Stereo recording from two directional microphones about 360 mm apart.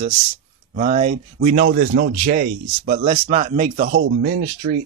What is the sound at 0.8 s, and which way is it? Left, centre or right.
Speech, centre.